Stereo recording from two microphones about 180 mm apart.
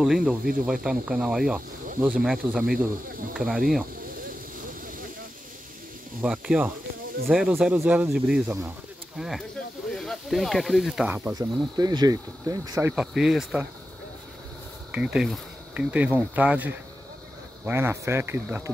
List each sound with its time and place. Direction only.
0.0 s speech: 5° right (ahead or behind)
6.2 s speech: 5° right (ahead or behind)
11.3 s speech: 20° right (ahead or behind)
12.9 s speech: 5° right (ahead or behind)
14.9 s speech: 5° right (ahead or behind)